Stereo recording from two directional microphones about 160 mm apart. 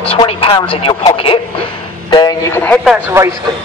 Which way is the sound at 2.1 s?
25° left (ahead or behind).